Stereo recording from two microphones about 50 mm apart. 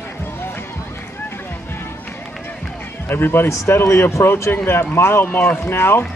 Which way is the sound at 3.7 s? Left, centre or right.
Left.